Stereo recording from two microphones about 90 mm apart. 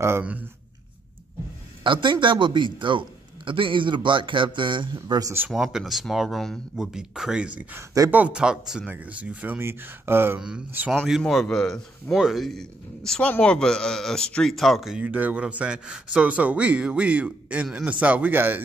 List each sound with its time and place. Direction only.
1.8 s a man's voice: 65° right (ahead or behind)
5.0 s speech: 50° right (ahead or behind)
5.5 s speech: 5° right (ahead or behind); by 10.4 s 25° right (ahead or behind)
11.1 s speech: centre (ahead or behind)
15.0 s speech: 15° right (ahead or behind)